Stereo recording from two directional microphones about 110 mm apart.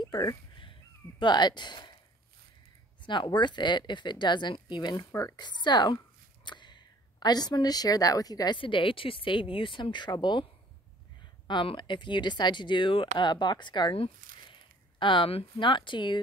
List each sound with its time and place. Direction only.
0.0 s a sound: 35° left (ahead or behind)
1.2 s speech: 40° left (ahead or behind)
3.1 s speech: 45° left (ahead or behind)
8.5 s speech: 50° left (ahead or behind)